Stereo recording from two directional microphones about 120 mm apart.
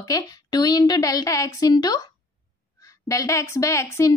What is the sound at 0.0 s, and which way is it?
A woman's voice, 30° left (ahead or behind).